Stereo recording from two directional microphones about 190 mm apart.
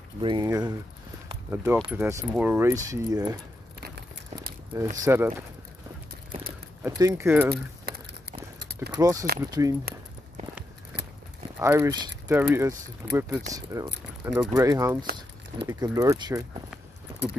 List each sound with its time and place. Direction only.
0.2 s speech: 20° right (ahead or behind)
4.7 s speech: 15° right (ahead or behind)
7.0 s speech: 15° right (ahead or behind)
7.5 s a sound: 55° right (ahead or behind)
8.9 s speech: 20° right (ahead or behind)
11.6 s speech: 15° right (ahead or behind)